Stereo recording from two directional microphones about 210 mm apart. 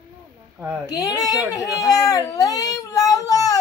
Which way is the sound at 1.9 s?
15° left (ahead or behind).